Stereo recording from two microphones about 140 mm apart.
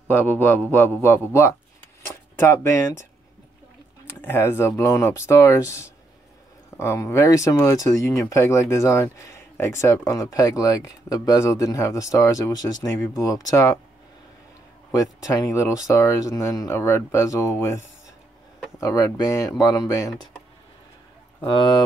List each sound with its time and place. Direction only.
0.1 s a man's voice: 15° left (ahead or behind)
4.1 s speech: 15° left (ahead or behind)
14.9 s speech: 25° left (ahead or behind)
21.5 s speech: 35° left (ahead or behind)